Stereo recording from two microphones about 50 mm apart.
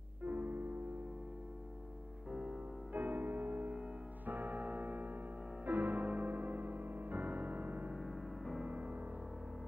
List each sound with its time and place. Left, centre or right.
0.2 s music: right
2.3 s music: centre
2.9 s music: right
7.9 s music: centre
8.6 s music: right